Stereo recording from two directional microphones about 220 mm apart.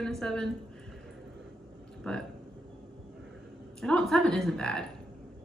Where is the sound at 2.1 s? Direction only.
5° left (ahead or behind).